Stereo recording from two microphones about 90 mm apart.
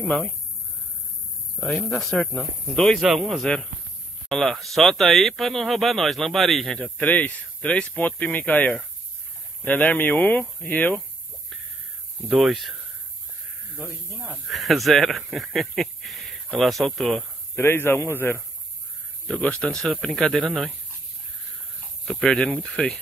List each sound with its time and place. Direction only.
1.6 s speech: 10° left (ahead or behind)
6.8 s speech: 15° left (ahead or behind)
12.2 s speech: centre (ahead or behind)
14.5 s speech: centre (ahead or behind)
17.6 s speech: 25° left (ahead or behind)
19.2 s speech: 15° left (ahead or behind)
22.0 s speech: 5° left (ahead or behind)